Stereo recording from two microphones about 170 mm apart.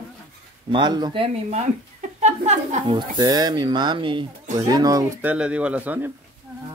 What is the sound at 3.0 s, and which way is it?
Speech, 25° right (ahead or behind).